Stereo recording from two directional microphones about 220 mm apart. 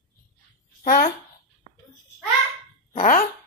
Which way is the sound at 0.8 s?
35° left (ahead or behind).